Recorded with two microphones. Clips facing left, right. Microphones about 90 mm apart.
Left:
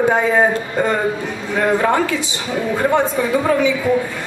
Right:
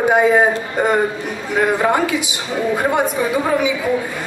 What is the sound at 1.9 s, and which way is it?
A man's voice, 15° right (ahead or behind).